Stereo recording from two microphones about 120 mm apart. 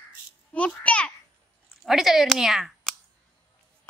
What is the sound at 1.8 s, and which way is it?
Speech, centre (ahead or behind).